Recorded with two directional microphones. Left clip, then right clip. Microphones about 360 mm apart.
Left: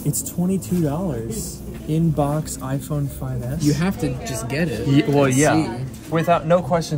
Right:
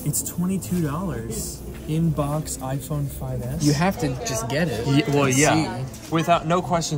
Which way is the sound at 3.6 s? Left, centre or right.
Centre.